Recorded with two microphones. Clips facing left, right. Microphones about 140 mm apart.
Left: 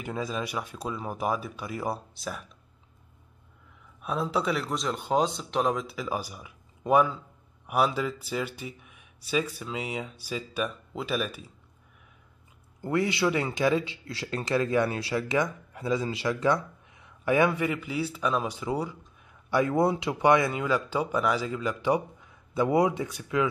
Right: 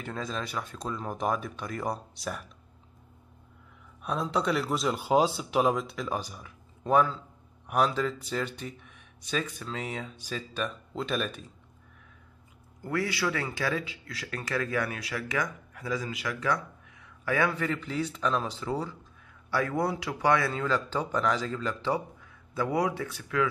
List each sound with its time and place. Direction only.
0.0 s speech: 10° left (ahead or behind)
4.0 s speech: 5° left (ahead or behind)
12.8 s speech: 20° left (ahead or behind)